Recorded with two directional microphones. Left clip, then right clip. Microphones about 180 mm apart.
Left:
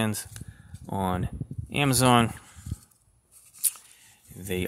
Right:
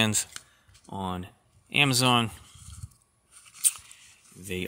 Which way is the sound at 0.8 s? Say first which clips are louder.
Left 5 dB; 15° left (ahead or behind).